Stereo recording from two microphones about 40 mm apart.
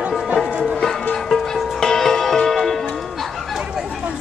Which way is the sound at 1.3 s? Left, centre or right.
Centre.